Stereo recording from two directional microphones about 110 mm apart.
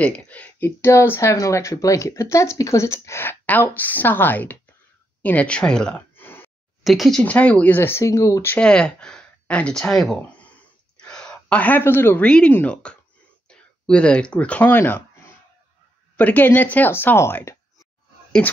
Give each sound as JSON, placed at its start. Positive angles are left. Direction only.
{"t": 0.0, "sound": "speech", "side_deg": 15}
{"t": 6.8, "sound": "speech", "side_deg": 0}
{"t": 7.2, "sound": "speech", "side_deg": 15}
{"t": 8.5, "sound": "a sound", "side_deg": 10}
{"t": 12.3, "sound": "speech", "side_deg": 10}
{"t": 16.2, "sound": "speech", "side_deg": 15}